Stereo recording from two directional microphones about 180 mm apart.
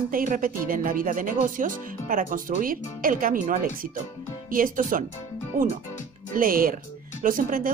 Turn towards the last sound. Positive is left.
turn(degrees=-50)  # may be behind; listen again after turning